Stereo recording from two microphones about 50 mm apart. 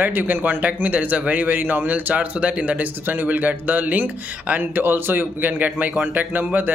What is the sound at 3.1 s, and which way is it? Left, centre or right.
A man's voice, right.